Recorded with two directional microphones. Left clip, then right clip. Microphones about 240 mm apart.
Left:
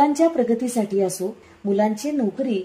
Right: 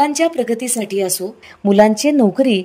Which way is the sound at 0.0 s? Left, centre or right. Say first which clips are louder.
Right 2 dB; right.